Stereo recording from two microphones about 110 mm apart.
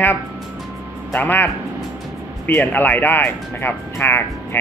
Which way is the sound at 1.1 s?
15° left (ahead or behind).